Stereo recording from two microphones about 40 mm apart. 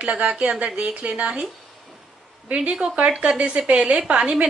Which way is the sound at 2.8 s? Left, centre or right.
Right.